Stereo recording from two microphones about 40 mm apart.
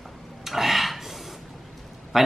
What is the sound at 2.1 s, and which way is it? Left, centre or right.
Speech, centre.